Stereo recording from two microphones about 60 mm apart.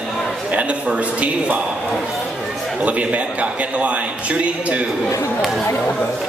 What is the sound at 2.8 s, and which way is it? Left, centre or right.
A man's voice, right.